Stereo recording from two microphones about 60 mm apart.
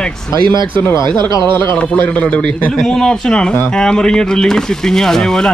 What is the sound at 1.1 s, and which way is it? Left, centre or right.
A man's voice, left.